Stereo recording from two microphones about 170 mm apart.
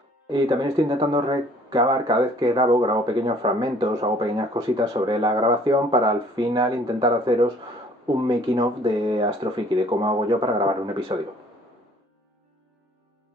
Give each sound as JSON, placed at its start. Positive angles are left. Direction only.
{"t": 0.3, "sound": "speech", "side_deg": -25}